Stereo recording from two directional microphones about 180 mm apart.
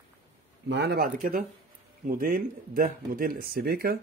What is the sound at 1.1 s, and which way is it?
Speech, 50° right (ahead or behind).